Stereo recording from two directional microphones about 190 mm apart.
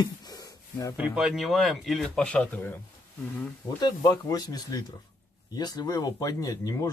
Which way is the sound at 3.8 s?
20° left (ahead or behind).